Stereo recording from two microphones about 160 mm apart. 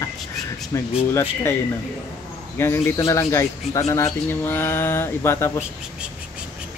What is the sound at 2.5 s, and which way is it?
Speech, 15° left (ahead or behind).